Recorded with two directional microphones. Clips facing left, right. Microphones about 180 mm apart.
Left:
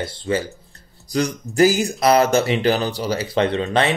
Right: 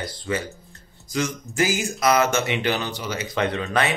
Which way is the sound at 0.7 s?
35° left (ahead or behind).